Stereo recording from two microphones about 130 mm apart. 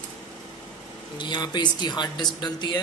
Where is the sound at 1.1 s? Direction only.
35° left (ahead or behind).